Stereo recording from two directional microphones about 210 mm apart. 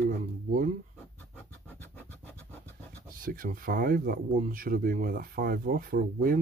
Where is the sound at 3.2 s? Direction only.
40° right (ahead or behind).